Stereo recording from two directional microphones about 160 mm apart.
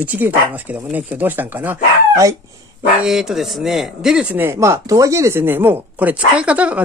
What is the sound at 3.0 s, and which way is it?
Speech, centre (ahead or behind).